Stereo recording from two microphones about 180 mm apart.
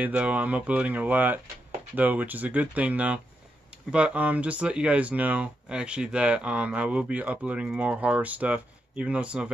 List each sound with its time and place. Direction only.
0.0 s speech: 5° right (ahead or behind)